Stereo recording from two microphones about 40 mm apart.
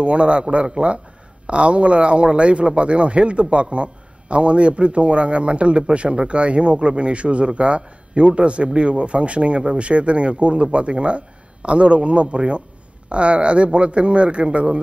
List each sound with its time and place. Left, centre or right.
0.0 s a man's voice: right